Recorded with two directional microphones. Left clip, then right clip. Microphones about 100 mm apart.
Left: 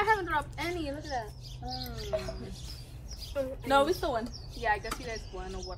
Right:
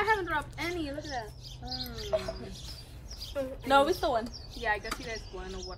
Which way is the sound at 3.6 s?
45° right (ahead or behind).